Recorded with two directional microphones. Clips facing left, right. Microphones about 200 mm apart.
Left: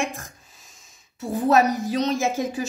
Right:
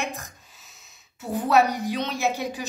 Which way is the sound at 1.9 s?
45° left (ahead or behind).